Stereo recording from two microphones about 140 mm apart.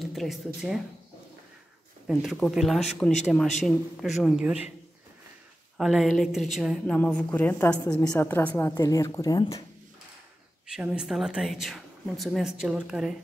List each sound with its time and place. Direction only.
0.0 s speech: centre (ahead or behind)
2.0 s speech: centre (ahead or behind)
5.8 s speech: centre (ahead or behind)
7.0 s a woman's voice: 10° left (ahead or behind)
10.7 s speech: 5° right (ahead or behind)